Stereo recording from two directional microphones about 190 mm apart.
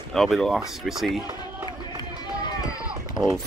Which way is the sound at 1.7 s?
25° left (ahead or behind).